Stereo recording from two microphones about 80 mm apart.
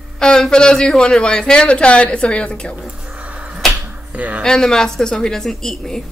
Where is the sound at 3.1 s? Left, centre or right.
Centre.